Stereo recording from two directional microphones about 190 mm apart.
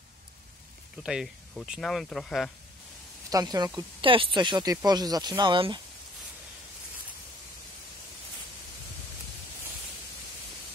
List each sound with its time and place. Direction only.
0.9 s speech: 5° right (ahead or behind)
3.3 s speech: 20° right (ahead or behind)